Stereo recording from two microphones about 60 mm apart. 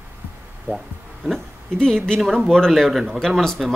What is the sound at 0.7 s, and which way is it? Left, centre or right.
Speech, left.